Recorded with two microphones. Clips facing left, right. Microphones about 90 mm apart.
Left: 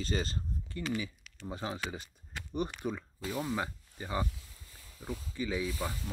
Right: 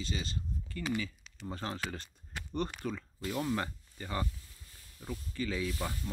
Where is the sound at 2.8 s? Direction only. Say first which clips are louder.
Left 1 dB; 15° left (ahead or behind).